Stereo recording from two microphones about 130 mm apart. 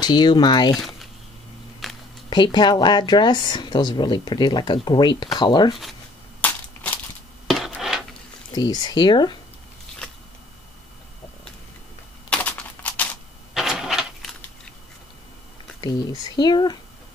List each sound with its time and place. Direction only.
0.0 s speech: 35° left (ahead or behind)
1.8 s a sound: centre (ahead or behind)
2.2 s speech: 35° left (ahead or behind)
6.4 s crushing: 10° left (ahead or behind)
7.4 s a sound: centre (ahead or behind)
8.5 s speech: 30° left (ahead or behind)
12.3 s a sound: 10° left (ahead or behind)
13.6 s vehicle: 5° right (ahead or behind)
15.8 s speech: 30° left (ahead or behind)